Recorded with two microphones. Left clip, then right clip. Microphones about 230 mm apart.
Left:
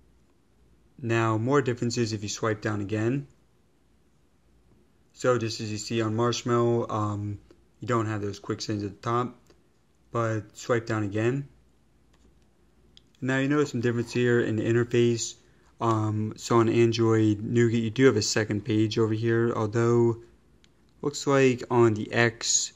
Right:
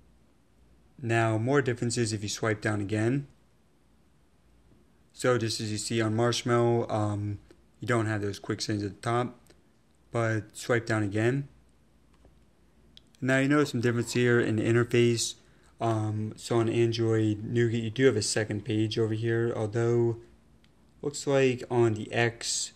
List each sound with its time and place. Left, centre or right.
1.0 s speech: centre
5.1 s speech: centre
12.9 s speech: centre
15.8 s speech: centre